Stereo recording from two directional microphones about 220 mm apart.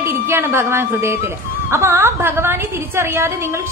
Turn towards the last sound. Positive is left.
turn(degrees=-10)  # may be behind; listen again after turning